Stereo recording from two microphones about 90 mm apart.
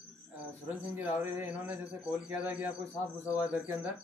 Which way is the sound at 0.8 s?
20° right (ahead or behind).